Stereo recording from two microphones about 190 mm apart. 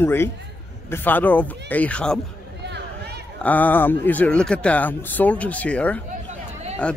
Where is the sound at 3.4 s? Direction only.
10° left (ahead or behind).